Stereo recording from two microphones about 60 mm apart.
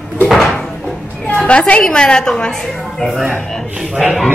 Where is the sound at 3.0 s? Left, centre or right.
Centre.